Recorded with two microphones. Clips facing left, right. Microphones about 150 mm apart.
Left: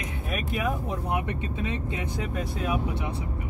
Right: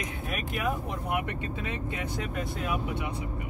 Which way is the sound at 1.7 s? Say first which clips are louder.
Left 3 dB; 20° left (ahead or behind).